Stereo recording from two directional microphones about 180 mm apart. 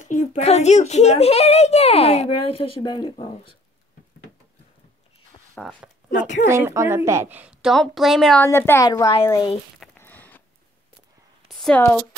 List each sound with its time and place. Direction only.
0.0 s a child's voice: 45° left (ahead or behind); by 3.5 s 25° left (ahead or behind)
5.5 s speech: 5° left (ahead or behind)
6.5 s a woman's voice: 15° right (ahead or behind); by 8.5 s centre (ahead or behind)
8.5 s a woman's voice: 15° left (ahead or behind)
9.9 s a sound: 10° left (ahead or behind)
11.4 s a sound: 5° left (ahead or behind)